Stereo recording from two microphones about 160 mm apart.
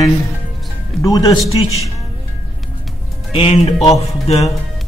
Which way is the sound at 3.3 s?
40° left (ahead or behind).